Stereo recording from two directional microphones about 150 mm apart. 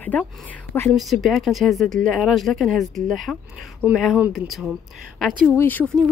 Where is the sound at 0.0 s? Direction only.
10° left (ahead or behind).